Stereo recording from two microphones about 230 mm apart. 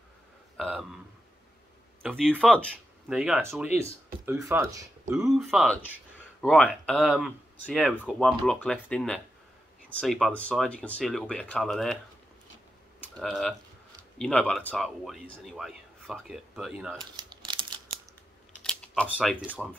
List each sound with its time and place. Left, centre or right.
0.6 s a man's voice: centre
2.0 s a man's voice: centre
5.3 s a man's voice: centre
13.0 s a man's voice: centre
17.0 s a sound: centre
18.6 s computer keyboard: centre
19.6 s a man's voice: centre